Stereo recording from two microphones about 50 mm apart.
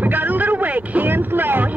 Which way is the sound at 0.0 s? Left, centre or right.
Right.